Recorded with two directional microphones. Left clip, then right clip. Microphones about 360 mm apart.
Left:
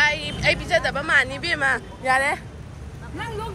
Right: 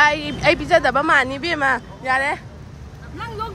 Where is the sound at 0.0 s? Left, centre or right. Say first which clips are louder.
Right 4 dB; centre.